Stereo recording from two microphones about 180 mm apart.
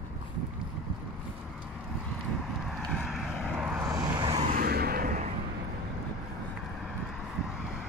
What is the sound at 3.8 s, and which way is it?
Vehicle, 20° right (ahead or behind).